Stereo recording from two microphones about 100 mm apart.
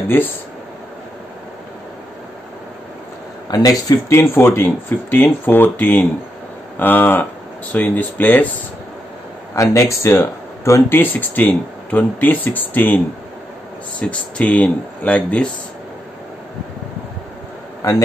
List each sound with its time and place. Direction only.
0.1 s speech: 20° left (ahead or behind)
3.4 s speech: 40° left (ahead or behind)
4.1 s speech: 25° left (ahead or behind)
9.6 s speech: 30° left (ahead or behind); by 15.5 s 10° left (ahead or behind)
17.8 s a man's voice: 35° left (ahead or behind)